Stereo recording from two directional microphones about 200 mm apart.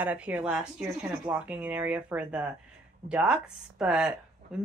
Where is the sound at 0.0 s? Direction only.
10° right (ahead or behind).